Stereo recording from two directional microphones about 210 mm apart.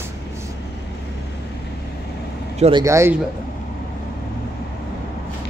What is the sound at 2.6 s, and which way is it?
Speech, 25° right (ahead or behind).